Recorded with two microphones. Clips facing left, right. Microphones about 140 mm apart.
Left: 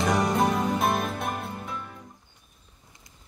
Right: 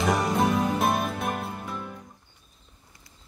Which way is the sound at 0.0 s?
Centre (ahead or behind).